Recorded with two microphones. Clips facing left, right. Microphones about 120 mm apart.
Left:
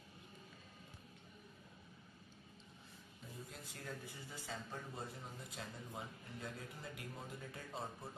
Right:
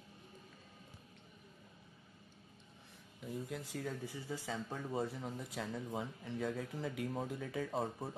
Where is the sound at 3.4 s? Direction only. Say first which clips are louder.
Right 7 dB; 90° right.